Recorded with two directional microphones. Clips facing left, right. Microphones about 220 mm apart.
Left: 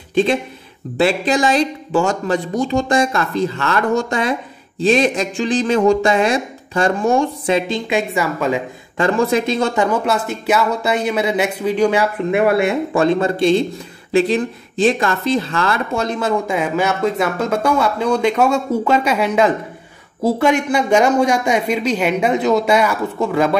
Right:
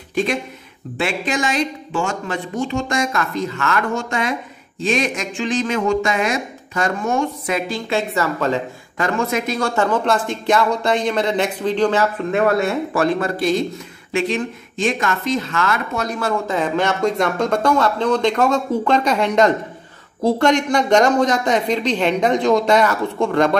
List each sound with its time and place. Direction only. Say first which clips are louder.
0.1 s speech: left 5 dB; 30° left (ahead or behind)
8.1 s speech: left 1 dB; 10° left (ahead or behind)
8.9 s speech: left 5 dB; 30° left (ahead or behind); by 12.7 s 10° left (ahead or behind)
12.9 s speech: left 4 dB; 25° left (ahead or behind); by 23.5 s 5° left (ahead or behind)